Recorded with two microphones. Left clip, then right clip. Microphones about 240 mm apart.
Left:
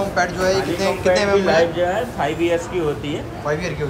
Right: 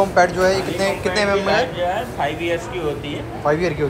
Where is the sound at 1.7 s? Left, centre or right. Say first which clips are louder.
Left 2 dB; left.